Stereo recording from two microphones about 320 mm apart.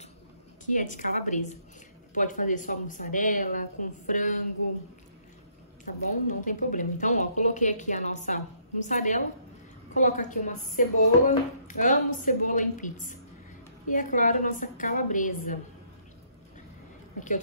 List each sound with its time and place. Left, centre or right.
0.7 s speech: left
6.2 s speech: left